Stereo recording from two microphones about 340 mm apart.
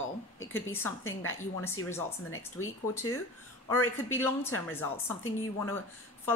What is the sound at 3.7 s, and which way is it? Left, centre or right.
A woman's voice, centre.